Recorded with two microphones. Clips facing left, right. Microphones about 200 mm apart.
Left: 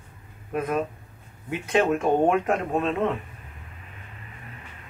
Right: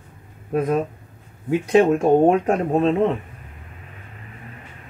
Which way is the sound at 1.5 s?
35° right (ahead or behind).